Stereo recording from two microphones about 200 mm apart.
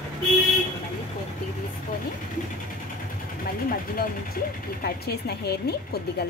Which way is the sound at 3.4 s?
45° left (ahead or behind).